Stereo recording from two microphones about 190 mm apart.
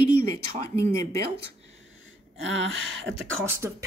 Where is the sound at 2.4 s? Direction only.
80° right.